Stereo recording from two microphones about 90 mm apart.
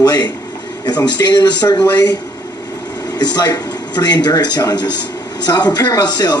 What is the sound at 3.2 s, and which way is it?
Speech, 45° left (ahead or behind).